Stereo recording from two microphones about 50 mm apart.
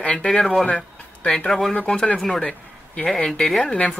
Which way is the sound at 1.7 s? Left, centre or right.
Left.